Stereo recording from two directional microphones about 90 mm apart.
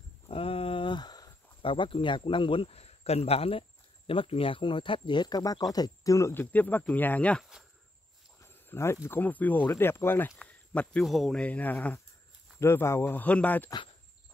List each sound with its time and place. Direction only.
0.3 s a sound: 90° left; by 1.3 s 50° left (ahead or behind)
1.6 s speech: 75° left (ahead or behind); by 6.3 s 35° left (ahead or behind)
6.3 s speech: 20° left (ahead or behind)
8.4 s a sound: 30° left (ahead or behind)
9.2 s speech: 20° left (ahead or behind)
10.3 s speech: 10° left (ahead or behind)
11.1 s speech: centre (ahead or behind)
11.4 s speech: 15° left (ahead or behind)
12.5 s speech: 30° left (ahead or behind)